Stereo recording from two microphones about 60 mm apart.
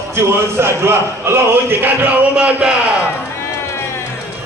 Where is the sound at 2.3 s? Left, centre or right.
Centre.